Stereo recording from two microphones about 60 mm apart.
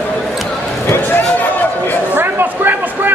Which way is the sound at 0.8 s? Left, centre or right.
Left.